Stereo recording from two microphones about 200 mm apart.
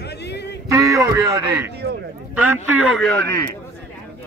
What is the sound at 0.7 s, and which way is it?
A man's voice, 15° right (ahead or behind).